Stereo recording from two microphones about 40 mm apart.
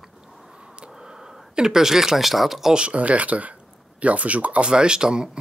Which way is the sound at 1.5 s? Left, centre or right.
Centre.